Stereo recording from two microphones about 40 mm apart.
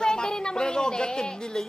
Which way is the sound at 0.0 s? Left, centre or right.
Centre.